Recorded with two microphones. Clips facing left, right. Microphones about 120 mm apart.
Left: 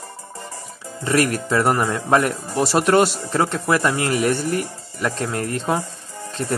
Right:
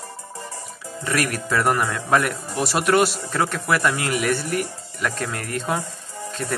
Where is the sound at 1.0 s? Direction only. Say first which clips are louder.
Left 5 dB; 25° left (ahead or behind).